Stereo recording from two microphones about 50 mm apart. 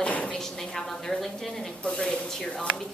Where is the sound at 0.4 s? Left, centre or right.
Centre.